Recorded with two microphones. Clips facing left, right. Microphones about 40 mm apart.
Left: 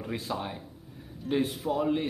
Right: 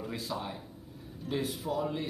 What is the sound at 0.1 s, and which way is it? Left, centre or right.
Speech, left.